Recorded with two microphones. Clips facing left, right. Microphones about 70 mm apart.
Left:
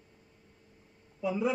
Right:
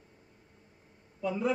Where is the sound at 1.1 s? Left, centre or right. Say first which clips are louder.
Even; centre.